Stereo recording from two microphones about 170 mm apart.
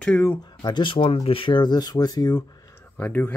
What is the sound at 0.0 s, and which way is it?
Speech, 10° left (ahead or behind).